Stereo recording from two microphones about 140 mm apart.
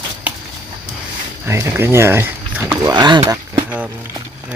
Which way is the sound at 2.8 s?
30° right (ahead or behind).